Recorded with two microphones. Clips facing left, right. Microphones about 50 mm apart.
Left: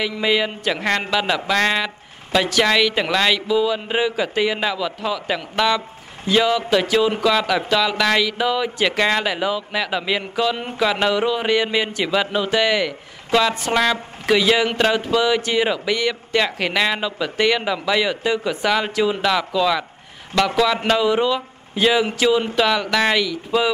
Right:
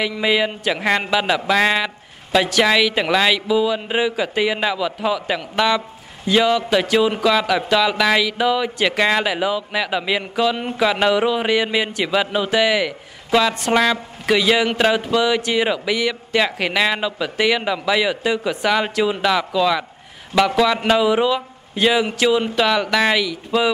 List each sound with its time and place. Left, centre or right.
0.0 s speech: centre